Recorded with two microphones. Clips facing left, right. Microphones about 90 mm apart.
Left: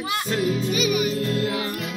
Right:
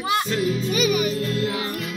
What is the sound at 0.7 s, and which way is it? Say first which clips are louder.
Music: right 1 dB; 45° right (ahead or behind).